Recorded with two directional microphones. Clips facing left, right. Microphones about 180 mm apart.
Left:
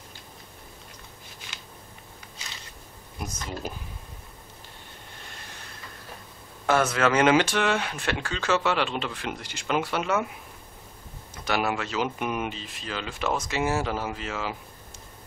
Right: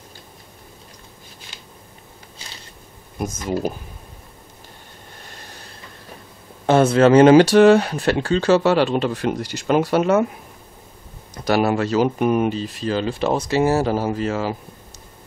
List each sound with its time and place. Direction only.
6.6 s speech: 30° right (ahead or behind)
11.3 s speech: 40° right (ahead or behind)